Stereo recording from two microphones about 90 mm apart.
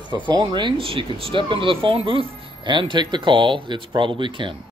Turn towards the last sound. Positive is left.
turn(degrees=-65)  # may be behind; listen again after turning